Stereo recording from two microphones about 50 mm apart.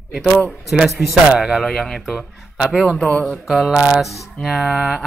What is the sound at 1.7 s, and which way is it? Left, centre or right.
Speech, centre.